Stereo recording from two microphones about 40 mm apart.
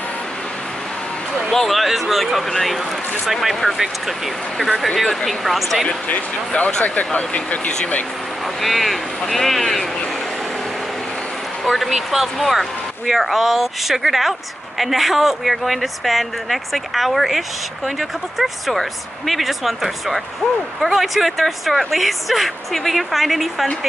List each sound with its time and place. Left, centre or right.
1.5 s a woman's voice: centre
5.9 s speech: left
8.5 s a woman's voice: centre
11.7 s a woman's voice: centre